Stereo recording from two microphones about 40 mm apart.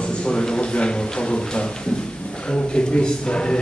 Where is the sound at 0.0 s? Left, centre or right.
Left.